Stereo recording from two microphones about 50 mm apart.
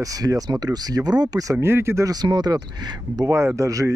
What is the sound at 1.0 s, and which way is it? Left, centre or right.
Speech, right.